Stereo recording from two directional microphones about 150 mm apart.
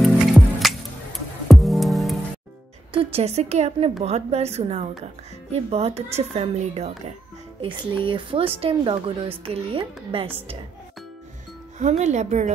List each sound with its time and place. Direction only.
0.0 s music: centre (ahead or behind)
2.9 s speech: 40° right (ahead or behind)
7.6 s speech: 35° right (ahead or behind)
11.8 s speech: 50° right (ahead or behind)